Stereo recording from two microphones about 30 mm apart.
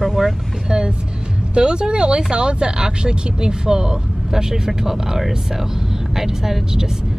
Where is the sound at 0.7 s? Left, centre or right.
Right.